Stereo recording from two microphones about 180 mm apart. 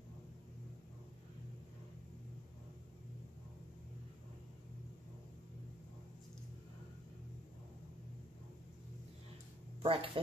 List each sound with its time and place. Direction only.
9.8 s speech: 30° right (ahead or behind)